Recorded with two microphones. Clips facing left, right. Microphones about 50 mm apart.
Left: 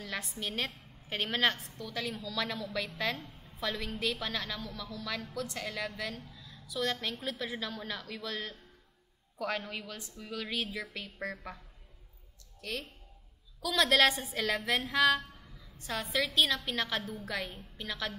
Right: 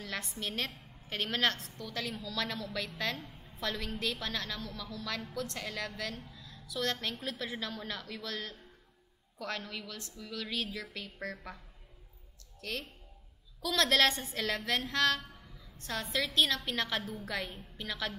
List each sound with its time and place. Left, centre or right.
0.0 s a woman's voice: centre
9.4 s a woman's voice: centre
13.6 s a woman's voice: centre